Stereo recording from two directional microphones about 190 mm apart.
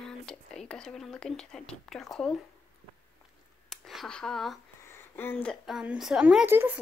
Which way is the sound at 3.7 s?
Centre (ahead or behind).